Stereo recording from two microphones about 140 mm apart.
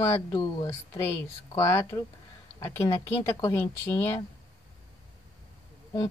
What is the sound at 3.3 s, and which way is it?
Speech, 25° left (ahead or behind).